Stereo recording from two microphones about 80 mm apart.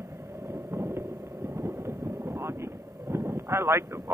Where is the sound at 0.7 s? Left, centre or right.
Right.